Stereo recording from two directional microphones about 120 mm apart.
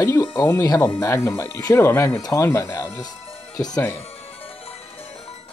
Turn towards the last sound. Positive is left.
turn(degrees=30)  # may be behind; listen again after turning